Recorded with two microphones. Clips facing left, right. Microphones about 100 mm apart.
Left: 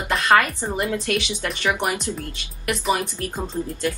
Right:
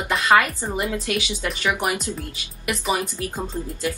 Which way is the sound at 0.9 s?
10° right (ahead or behind).